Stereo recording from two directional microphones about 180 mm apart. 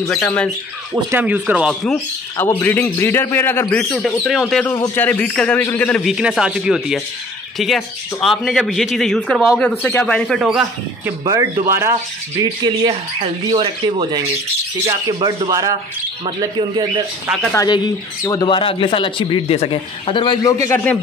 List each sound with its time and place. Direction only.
0.2 s a man's voice: 10° left (ahead or behind)
1.1 s speech: 10° right (ahead or behind)
2.6 s a man's voice: 10° left (ahead or behind)
4.7 s a man's voice: 15° left (ahead or behind)
6.1 s speech: 5° right (ahead or behind)
11.7 s speech: 15° right (ahead or behind)
17.5 s speech: 20° left (ahead or behind)